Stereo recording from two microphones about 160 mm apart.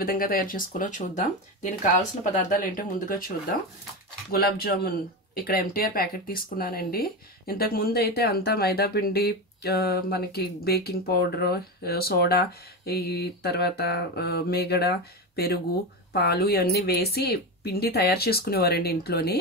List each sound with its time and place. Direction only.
0.0 s speech: 65° left (ahead or behind)
4.3 s speech: 75° left (ahead or behind)